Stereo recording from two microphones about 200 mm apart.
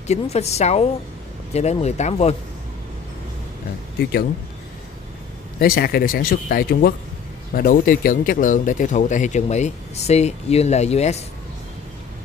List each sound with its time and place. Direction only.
0.0 s a man's voice: 35° left (ahead or behind)
4.0 s speech: 50° left (ahead or behind)
5.6 s a man's voice: 50° left (ahead or behind); by 11.1 s 35° left (ahead or behind)